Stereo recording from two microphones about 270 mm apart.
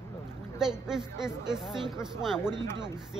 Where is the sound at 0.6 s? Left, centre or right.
Centre.